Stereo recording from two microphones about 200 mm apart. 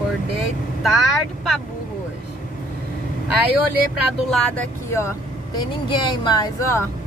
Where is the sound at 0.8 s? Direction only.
Centre (ahead or behind).